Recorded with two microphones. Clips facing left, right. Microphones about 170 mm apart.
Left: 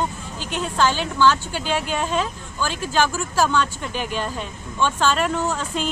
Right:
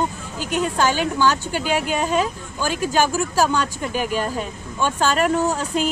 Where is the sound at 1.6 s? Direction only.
10° right (ahead or behind).